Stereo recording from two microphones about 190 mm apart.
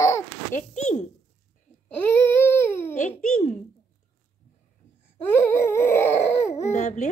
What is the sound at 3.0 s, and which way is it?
Speech, 35° left (ahead or behind).